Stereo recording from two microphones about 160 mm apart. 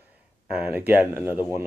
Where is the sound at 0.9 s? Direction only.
10° right (ahead or behind).